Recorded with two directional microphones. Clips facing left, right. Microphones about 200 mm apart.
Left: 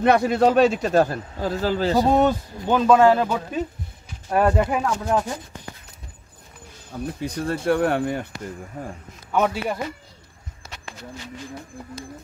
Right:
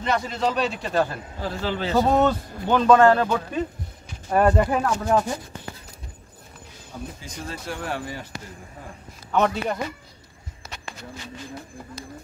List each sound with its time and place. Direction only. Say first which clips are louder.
0.0 s a man's voice: left 7 dB; 60° left (ahead or behind); by 2.0 s 40° left (ahead or behind)
2.0 s speech: right 1 dB; 15° left (ahead or behind)
7.2 s speech: left 9 dB; 60° left (ahead or behind)
9.3 s speech: even; 5° left (ahead or behind)